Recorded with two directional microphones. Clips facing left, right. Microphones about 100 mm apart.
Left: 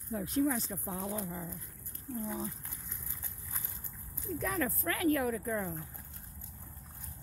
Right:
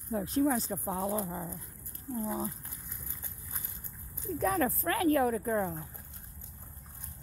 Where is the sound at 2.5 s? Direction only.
10° right (ahead or behind).